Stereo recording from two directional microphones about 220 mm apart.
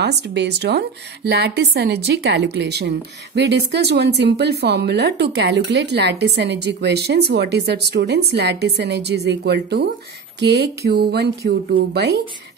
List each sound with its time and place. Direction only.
0.0 s speech: 50° right (ahead or behind)